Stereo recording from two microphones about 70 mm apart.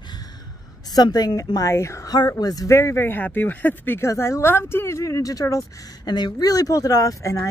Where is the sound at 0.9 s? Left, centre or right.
Left.